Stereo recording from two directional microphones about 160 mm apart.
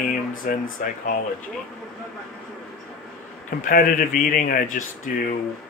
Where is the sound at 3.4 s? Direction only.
55° left (ahead or behind).